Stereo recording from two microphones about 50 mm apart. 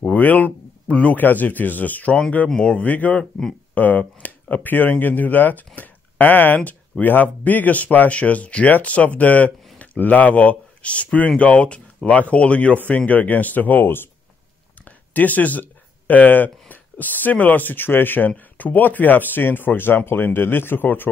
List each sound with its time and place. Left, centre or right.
0.0 s a sound: left
1.1 s speech: left
2.5 s speech: centre
2.8 s speech: left
14.9 s a sound: left
16.1 s speech: left